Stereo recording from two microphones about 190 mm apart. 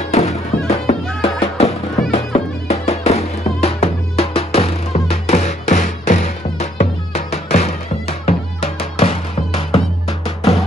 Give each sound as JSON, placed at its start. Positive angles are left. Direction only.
{"t": 0.0, "sound": "music", "side_deg": 35}